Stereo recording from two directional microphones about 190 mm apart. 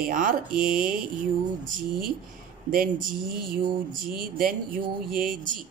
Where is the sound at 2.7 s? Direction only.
50° right (ahead or behind).